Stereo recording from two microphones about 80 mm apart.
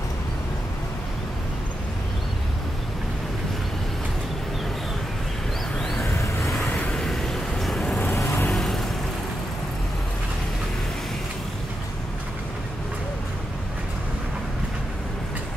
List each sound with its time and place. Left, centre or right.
5.8 s vehicle: centre
6.0 s vehicle: left
6.7 s vehicle: centre
7.0 s vehicle: centre
8.0 s vehicle: left